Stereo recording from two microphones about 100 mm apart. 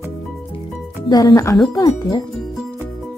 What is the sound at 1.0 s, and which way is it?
Speech, 40° left (ahead or behind).